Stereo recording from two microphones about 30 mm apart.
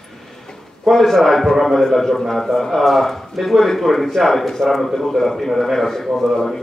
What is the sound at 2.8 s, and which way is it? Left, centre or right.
A man's voice, centre.